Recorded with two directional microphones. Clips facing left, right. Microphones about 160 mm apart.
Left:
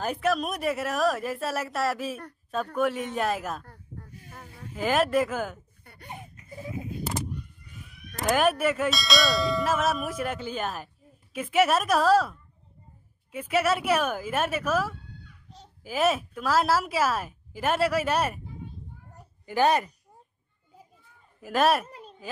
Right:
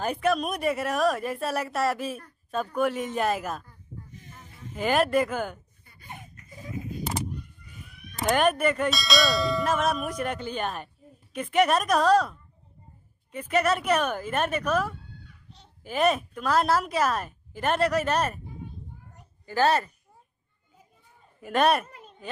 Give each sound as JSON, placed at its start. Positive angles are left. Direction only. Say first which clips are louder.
{"t": 0.0, "sound": "bell", "louder": "right 1 dB", "side_deg": 0}
{"t": 3.6, "sound": "a sound", "louder": "left 1 dB", "side_deg": 70}
{"t": 4.7, "sound": "bell", "louder": "right 1 dB", "side_deg": 0}
{"t": 5.9, "sound": "baby laughter", "louder": "left 10 dB", "side_deg": 65}
{"t": 8.2, "sound": "bell", "louder": "right 1 dB", "side_deg": 0}
{"t": 13.3, "sound": "speech", "louder": "even", "side_deg": 5}
{"t": 15.8, "sound": "bell", "louder": "right 1 dB", "side_deg": 5}
{"t": 19.4, "sound": "speech", "louder": "even", "side_deg": 15}
{"t": 21.4, "sound": "bell", "louder": "even", "side_deg": 0}
{"t": 21.8, "sound": "a sound", "louder": "left 3 dB", "side_deg": 35}